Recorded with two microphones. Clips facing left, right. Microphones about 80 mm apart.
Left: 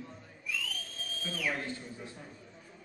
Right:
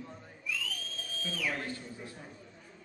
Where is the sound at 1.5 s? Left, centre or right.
Left.